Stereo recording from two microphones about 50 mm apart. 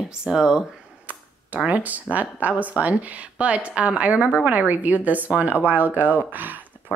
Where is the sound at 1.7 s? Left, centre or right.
Right.